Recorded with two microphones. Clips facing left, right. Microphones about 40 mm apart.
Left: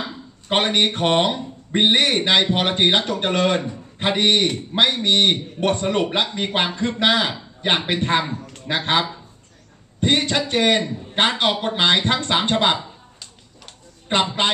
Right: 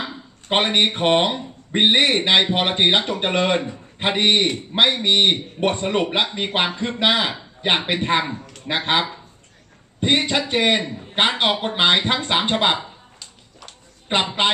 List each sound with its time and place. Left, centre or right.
0.0 s speech: centre
14.2 s speech: centre